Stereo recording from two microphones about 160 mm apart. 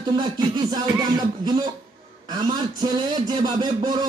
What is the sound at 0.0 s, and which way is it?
A man's voice, 30° right (ahead or behind).